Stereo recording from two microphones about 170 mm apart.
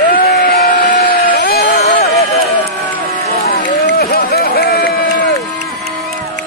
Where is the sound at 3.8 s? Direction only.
80° left.